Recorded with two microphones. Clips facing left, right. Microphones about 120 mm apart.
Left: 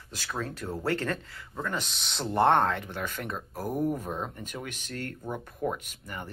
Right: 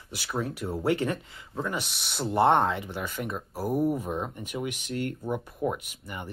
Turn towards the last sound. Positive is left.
turn(degrees=-10)  # may be behind; listen again after turning